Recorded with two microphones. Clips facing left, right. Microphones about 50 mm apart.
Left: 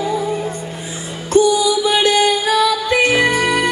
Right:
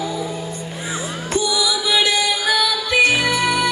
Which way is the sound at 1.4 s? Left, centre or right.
Left.